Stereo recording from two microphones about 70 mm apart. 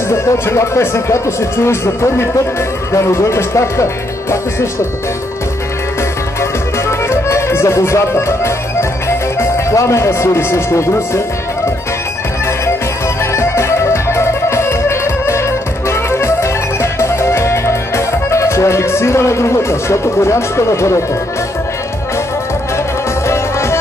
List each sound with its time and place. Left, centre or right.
0.1 s speech: left
6.9 s music: left
9.4 s speech: left
13.2 s music: left
23.2 s music: left